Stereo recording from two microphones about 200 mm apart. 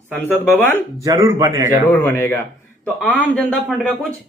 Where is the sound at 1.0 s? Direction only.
15° right (ahead or behind).